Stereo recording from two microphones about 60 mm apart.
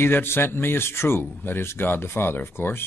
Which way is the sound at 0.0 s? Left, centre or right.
Left.